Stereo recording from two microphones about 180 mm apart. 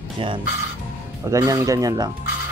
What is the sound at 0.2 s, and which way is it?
Speech, 30° right (ahead or behind).